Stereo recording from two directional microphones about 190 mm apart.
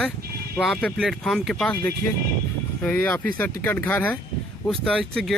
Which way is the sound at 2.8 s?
10° left (ahead or behind).